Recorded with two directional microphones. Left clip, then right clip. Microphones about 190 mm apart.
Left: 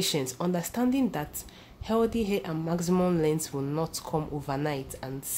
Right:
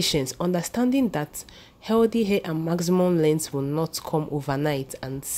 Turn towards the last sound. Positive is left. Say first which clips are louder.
# right 5 dB
turn(degrees=-30)  # may be behind; listen again after turning